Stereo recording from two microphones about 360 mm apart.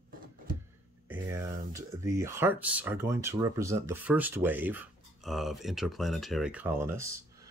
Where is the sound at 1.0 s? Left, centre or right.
Centre.